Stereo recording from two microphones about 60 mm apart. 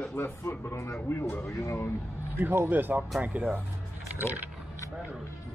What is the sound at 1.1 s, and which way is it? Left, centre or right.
Speech, left.